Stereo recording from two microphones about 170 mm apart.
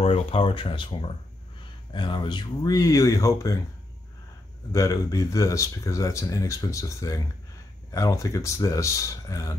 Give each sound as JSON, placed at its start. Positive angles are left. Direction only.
{"t": 0.0, "sound": "speech", "side_deg": 35}
{"t": 4.7, "sound": "speech", "side_deg": 20}